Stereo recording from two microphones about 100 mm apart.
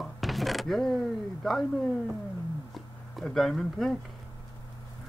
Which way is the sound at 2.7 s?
Centre (ahead or behind).